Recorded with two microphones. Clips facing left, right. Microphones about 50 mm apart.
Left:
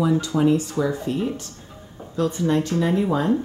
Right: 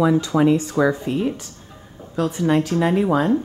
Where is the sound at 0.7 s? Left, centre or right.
Right.